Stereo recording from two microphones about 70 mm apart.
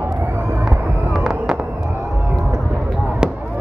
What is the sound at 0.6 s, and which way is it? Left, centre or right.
Fireworks, centre.